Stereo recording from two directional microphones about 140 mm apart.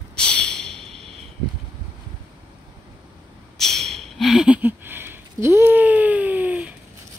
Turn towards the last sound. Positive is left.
turn(degrees=-10)  # may be behind; listen again after turning